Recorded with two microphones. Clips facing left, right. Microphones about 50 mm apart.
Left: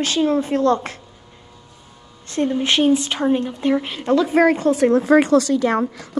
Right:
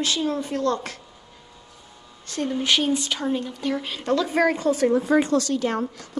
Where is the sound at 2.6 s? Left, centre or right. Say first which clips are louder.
Left 5 dB; left; by 4.5 s centre.